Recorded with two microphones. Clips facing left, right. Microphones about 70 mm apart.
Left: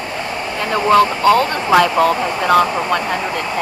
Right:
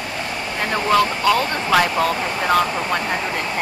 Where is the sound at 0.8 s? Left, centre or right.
Left.